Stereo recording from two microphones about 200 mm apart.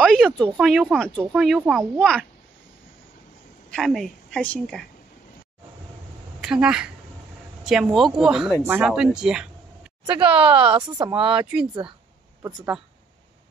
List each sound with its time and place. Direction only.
0.0 s a woman's voice: centre (ahead or behind)
3.7 s a woman's voice: centre (ahead or behind)
6.4 s a woman's voice: 5° right (ahead or behind)
10.0 s a woman's voice: 25° right (ahead or behind)